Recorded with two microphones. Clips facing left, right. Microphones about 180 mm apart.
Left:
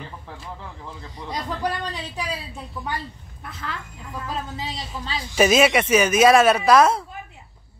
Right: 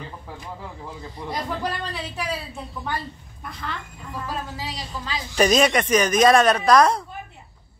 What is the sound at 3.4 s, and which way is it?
Speech, 5° left (ahead or behind).